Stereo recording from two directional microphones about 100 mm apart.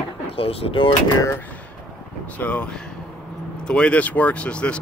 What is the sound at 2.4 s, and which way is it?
Speech, 15° left (ahead or behind).